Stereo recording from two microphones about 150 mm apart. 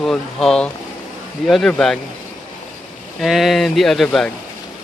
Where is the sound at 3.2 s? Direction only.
Centre (ahead or behind).